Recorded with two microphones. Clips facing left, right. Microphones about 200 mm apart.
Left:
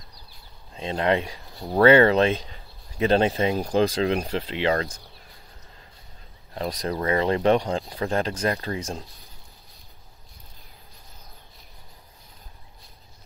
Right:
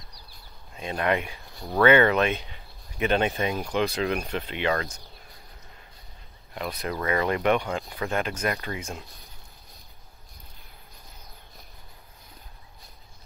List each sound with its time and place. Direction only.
0.7 s speech: 25° left (ahead or behind)
6.5 s speech: 35° left (ahead or behind)